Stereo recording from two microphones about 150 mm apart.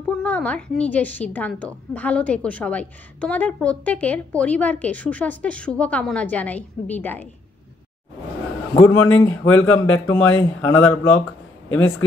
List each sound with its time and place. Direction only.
0.2 s a woman's voice: 10° left (ahead or behind)
8.8 s a woman's voice: 15° left (ahead or behind)